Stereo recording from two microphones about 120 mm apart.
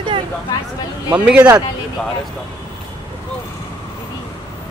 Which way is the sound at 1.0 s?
10° right (ahead or behind).